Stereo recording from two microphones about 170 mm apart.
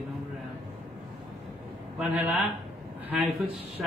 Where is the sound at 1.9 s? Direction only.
10° right (ahead or behind).